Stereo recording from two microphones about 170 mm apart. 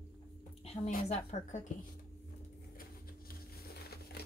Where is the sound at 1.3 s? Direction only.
40° left (ahead or behind).